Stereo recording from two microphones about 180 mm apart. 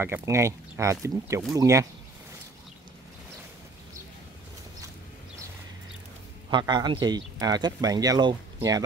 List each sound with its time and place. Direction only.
0.0 s speech: 15° right (ahead or behind)
6.5 s a man's voice: 25° right (ahead or behind)